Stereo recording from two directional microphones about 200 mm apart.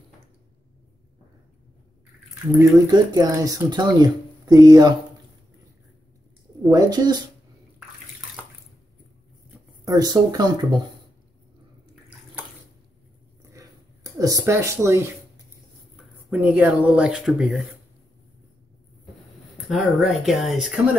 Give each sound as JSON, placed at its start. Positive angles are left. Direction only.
{"t": 2.5, "sound": "speech", "side_deg": -15}
{"t": 6.7, "sound": "speech", "side_deg": -20}
{"t": 9.8, "sound": "speech", "side_deg": -20}
{"t": 13.5, "sound": "a sound", "side_deg": -15}
{"t": 16.0, "sound": "speech", "side_deg": -5}
{"t": 19.7, "sound": "speech", "side_deg": 0}